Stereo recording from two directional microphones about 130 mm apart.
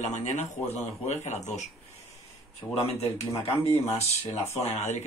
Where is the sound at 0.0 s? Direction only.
65° left (ahead or behind).